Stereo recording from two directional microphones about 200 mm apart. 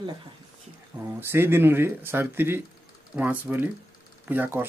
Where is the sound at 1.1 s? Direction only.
10° right (ahead or behind).